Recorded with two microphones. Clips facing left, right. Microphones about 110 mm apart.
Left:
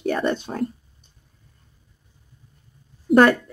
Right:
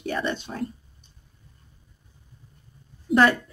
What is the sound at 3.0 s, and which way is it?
Speech, 50° left (ahead or behind).